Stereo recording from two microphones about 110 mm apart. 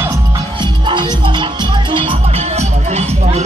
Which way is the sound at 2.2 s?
75° right (ahead or behind).